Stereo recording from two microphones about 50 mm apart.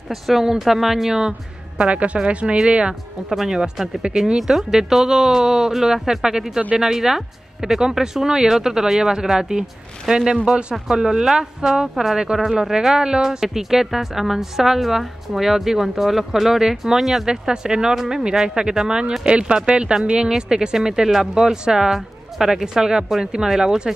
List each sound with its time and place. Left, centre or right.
0.1 s speech: centre
1.8 s a woman's voice: right; by 17.3 s centre
17.3 s speech: centre